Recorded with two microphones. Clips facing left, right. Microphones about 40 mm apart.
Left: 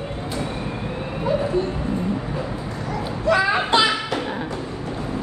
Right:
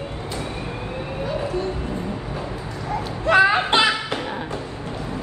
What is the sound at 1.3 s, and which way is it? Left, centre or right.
Speech, left.